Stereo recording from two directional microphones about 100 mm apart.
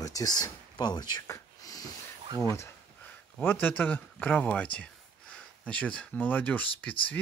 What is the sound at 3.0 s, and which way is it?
Speech, 20° left (ahead or behind).